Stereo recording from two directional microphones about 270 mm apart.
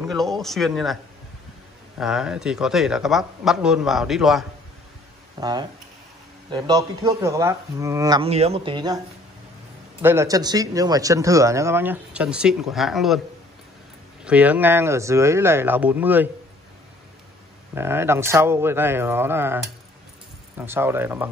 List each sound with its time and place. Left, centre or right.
0.0 s a man's voice: centre
2.0 s a man's voice: centre
5.4 s a man's voice: centre
10.0 s a man's voice: centre
14.2 s a man's voice: centre
17.7 s a man's voice: centre